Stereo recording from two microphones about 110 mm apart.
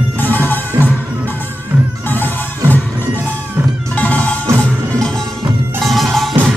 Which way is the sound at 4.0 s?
15° left (ahead or behind).